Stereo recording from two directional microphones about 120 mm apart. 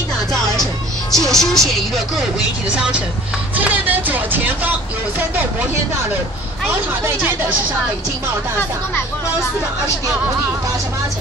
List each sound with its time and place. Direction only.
1.1 s speech: 5° left (ahead or behind)
3.5 s speech: 15° right (ahead or behind)
6.7 s speech: 20° right (ahead or behind)